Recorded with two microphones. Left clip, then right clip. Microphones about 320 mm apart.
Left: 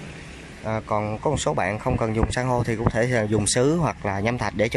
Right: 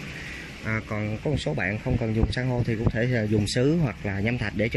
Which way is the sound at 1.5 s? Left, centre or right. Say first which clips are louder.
Left 4 dB; left.